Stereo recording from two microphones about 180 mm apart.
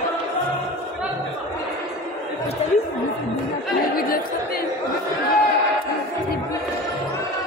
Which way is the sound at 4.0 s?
55° left (ahead or behind).